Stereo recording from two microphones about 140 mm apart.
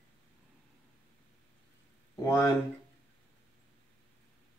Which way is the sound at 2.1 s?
20° left (ahead or behind).